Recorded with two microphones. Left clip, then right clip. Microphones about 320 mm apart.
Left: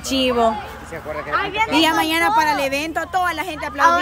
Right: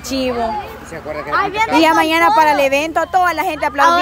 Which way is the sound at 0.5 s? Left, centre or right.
Right.